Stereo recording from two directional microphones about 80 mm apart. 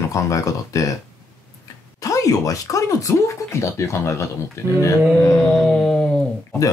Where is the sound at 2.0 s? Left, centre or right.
Left.